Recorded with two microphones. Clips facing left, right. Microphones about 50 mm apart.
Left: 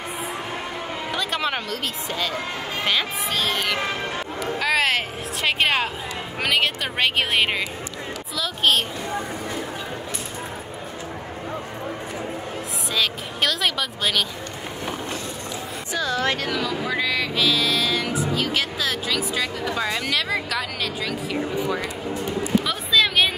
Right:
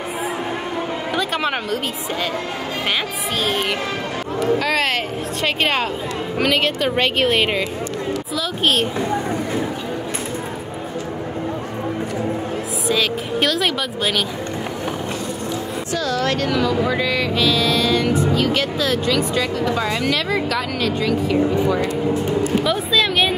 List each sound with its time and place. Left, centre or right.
1.1 s a sound: centre
2.9 s speech: centre
4.6 s speech: centre
12.8 s a woman's voice: centre
16.0 s speech: left
16.3 s speech: centre
22.7 s speech: centre